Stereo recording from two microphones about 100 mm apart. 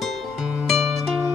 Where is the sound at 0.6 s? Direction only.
Centre (ahead or behind).